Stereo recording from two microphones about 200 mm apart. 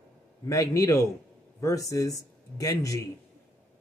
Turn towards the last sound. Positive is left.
turn(degrees=15)  # may be behind; listen again after turning